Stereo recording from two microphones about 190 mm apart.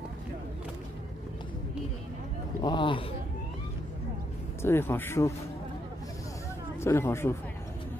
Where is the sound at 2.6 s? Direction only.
25° left (ahead or behind).